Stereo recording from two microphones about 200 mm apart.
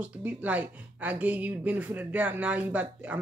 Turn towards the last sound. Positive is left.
turn(degrees=-10)  # may be behind; listen again after turning